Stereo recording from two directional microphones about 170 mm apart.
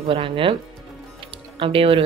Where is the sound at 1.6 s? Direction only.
30° right (ahead or behind).